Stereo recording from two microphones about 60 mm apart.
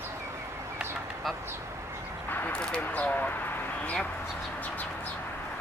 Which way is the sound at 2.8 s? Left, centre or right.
Left.